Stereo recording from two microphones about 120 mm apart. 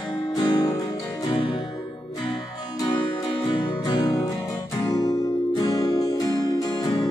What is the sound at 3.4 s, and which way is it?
Music, 35° left (ahead or behind).